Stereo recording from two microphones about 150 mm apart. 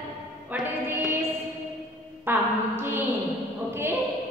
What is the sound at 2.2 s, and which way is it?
Speech, 15° right (ahead or behind).